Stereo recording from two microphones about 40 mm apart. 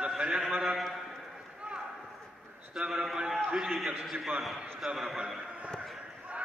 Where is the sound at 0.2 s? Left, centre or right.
Right.